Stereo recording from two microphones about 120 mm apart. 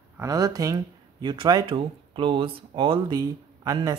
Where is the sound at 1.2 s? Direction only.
45° right (ahead or behind).